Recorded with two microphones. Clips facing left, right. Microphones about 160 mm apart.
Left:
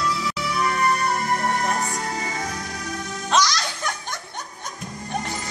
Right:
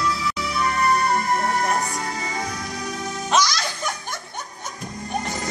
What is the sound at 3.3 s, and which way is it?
Music, 5° right (ahead or behind).